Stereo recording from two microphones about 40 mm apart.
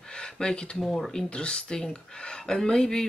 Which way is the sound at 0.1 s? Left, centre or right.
Centre.